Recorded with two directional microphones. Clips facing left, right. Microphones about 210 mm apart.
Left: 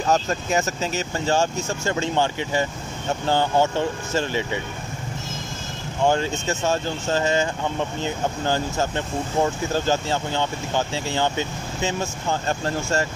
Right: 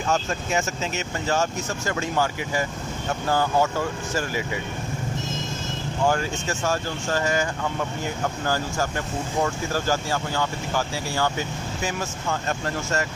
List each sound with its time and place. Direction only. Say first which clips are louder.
0.0 s speech: left 3 dB; 40° left (ahead or behind)
6.0 s speech: left 3 dB; 25° left (ahead or behind)